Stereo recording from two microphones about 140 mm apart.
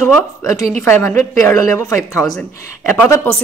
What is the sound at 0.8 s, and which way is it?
Speech, 20° left (ahead or behind).